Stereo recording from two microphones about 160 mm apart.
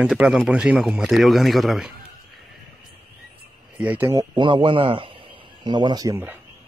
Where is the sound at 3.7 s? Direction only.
10° right (ahead or behind).